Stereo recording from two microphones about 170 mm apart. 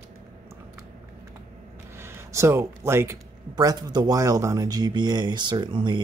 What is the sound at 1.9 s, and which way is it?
Speech, 15° right (ahead or behind).